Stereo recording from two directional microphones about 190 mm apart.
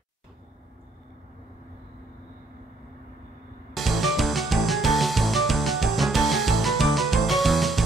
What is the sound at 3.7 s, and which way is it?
Music, centre (ahead or behind).